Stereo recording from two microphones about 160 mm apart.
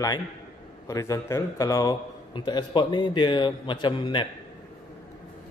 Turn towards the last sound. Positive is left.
turn(degrees=30)  # may be behind; listen again after turning